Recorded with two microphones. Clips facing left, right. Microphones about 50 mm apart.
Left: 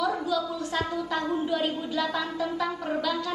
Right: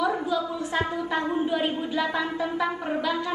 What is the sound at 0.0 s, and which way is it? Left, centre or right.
A woman's voice, right.